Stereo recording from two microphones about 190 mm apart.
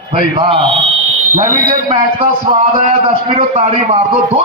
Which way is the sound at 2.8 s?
35° right (ahead or behind).